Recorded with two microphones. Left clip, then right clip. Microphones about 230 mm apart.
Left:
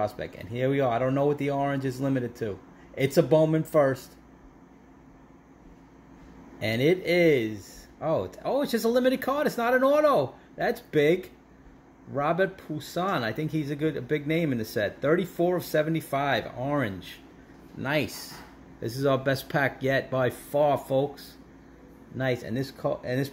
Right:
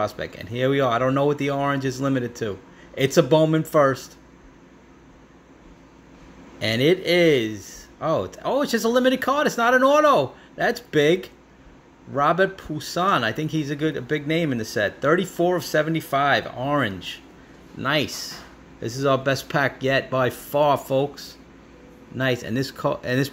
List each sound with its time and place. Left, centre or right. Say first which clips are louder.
0.0 s speech: right 4 dB; centre
6.6 s speech: right 5 dB; centre